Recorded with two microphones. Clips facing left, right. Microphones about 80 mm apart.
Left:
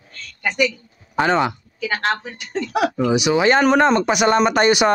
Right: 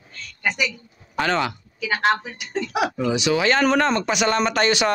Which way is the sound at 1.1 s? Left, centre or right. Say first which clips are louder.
Left 4 dB; centre.